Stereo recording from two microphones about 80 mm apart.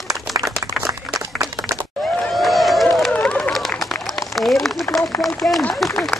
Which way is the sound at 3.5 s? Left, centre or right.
Centre.